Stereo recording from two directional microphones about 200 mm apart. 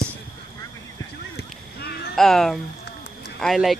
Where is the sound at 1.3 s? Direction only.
50° left (ahead or behind).